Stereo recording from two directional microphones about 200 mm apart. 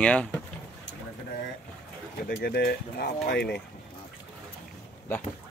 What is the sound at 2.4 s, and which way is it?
Speech, 55° left (ahead or behind).